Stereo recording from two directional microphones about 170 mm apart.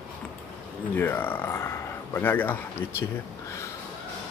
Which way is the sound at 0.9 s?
15° left (ahead or behind).